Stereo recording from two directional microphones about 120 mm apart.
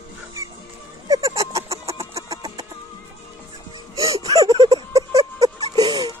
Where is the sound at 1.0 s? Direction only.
30° right (ahead or behind).